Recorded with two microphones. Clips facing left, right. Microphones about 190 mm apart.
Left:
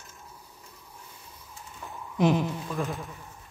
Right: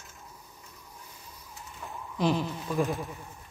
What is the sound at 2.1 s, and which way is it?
Speech, 20° left (ahead or behind).